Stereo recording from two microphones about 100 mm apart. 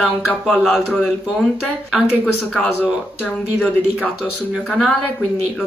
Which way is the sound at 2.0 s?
15° left (ahead or behind).